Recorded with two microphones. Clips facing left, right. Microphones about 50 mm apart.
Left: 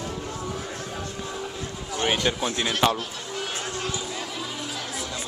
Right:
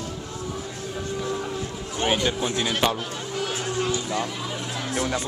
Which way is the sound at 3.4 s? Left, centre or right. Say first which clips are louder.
Right 5 dB; centre.